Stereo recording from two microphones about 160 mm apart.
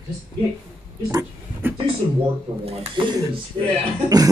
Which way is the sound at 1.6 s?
15° right (ahead or behind).